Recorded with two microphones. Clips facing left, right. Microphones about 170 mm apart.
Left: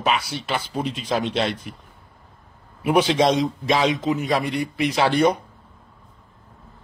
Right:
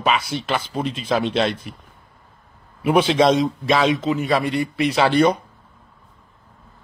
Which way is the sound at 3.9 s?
20° left (ahead or behind).